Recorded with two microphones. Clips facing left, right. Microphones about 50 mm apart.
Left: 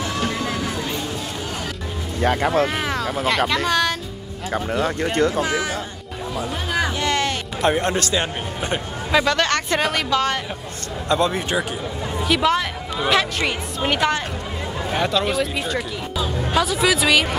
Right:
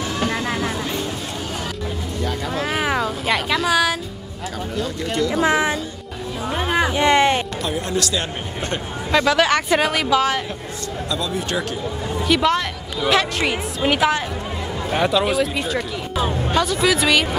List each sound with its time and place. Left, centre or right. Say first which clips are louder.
0.3 s a sound: right 2 dB; right
2.2 s speech: left 8 dB; left
2.6 s speech: right 1 dB; centre
5.0 s speech: left 2 dB; left
5.3 s speech: right 4 dB; right
6.4 s music: right 4 dB; right
7.6 s speech: left 4 dB; left
8.5 s speech: left 1 dB; centre
9.1 s speech: right 2 dB; centre
11.1 s speech: left 6 dB; left
12.2 s speech: right 1 dB; centre